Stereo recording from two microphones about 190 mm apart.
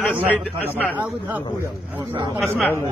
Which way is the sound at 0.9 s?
10° right (ahead or behind).